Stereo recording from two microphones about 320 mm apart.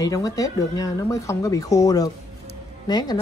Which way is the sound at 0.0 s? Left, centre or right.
Centre.